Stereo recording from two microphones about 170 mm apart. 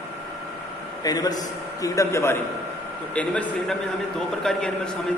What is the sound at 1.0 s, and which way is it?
A man's voice, 20° left (ahead or behind).